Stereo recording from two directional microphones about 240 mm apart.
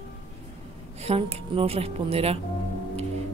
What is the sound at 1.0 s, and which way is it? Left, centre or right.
Speech, right.